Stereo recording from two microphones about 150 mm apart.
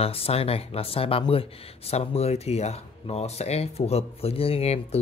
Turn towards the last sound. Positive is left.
turn(degrees=45)  # may be behind; listen again after turning